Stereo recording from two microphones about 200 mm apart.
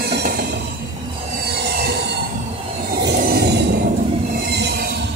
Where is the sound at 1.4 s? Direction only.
55° right (ahead or behind).